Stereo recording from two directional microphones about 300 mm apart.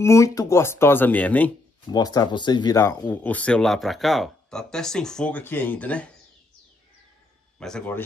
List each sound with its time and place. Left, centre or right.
0.0 s speech: centre
7.5 s speech: centre